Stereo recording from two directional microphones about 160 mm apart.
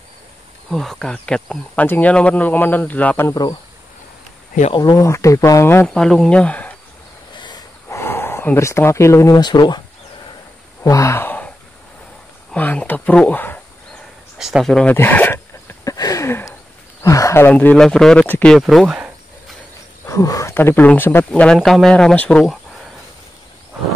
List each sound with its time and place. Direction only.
0.7 s speech: centre (ahead or behind); by 3.5 s 20° left (ahead or behind)
4.7 s speech: 25° left (ahead or behind)
5.9 s speech: 5° left (ahead or behind)
7.3 s a sound: 25° left (ahead or behind)
10.8 s a sound: 20° left (ahead or behind)
12.5 s speech: 10° left (ahead or behind)
14.4 s a sound: centre (ahead or behind); by 16.5 s 15° left (ahead or behind)
17.0 s speech: 20° left (ahead or behind); by 19.0 s centre (ahead or behind)
20.1 s speech: 20° left (ahead or behind)